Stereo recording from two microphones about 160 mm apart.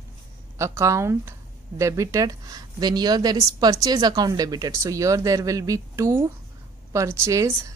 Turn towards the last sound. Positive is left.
turn(degrees=-15)  # may be behind; listen again after turning